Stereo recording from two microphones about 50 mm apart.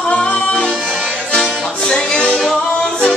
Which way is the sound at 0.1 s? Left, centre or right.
Left.